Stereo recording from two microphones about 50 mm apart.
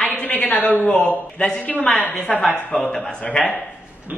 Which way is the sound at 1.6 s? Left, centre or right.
Left.